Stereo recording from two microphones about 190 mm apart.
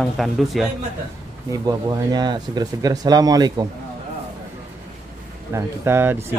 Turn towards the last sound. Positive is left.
turn(degrees=-10)  # may be behind; listen again after turning